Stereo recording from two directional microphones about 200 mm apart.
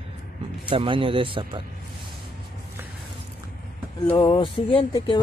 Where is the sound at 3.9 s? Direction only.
25° left (ahead or behind).